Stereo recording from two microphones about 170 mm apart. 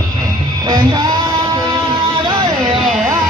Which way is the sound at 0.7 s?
25° right (ahead or behind).